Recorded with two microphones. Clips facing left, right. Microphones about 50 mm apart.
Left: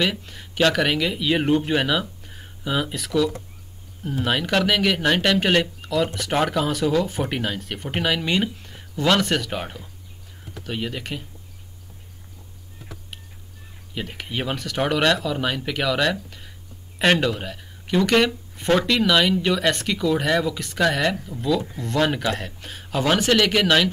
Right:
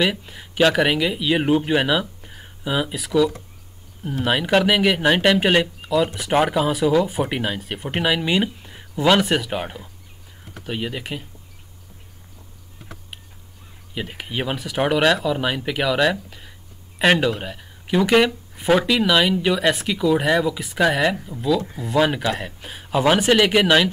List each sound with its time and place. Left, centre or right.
0.0 s speech: centre
13.9 s speech: centre